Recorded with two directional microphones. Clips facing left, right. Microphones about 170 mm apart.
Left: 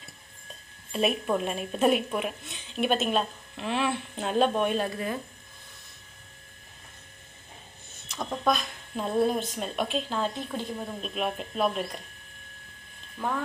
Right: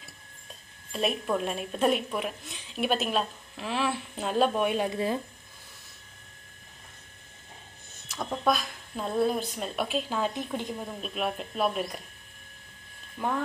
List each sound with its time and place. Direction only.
0.9 s speech: 5° left (ahead or behind)
4.9 s speech: 25° right (ahead or behind)
8.1 s a woman's voice: 5° right (ahead or behind)
10.7 s speech: centre (ahead or behind)
13.2 s speech: 15° right (ahead or behind)